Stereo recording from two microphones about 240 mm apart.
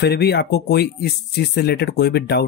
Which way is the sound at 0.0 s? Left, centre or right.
Left.